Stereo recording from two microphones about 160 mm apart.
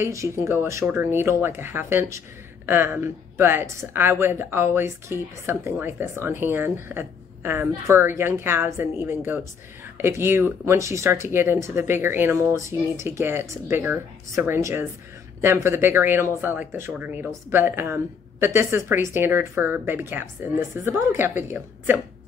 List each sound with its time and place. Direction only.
0.0 s speech: 15° right (ahead or behind)